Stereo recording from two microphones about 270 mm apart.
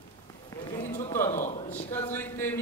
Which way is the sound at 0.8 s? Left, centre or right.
Left.